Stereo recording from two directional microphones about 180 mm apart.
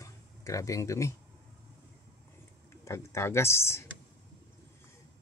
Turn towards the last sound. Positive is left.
turn(degrees=15)  # may be behind; listen again after turning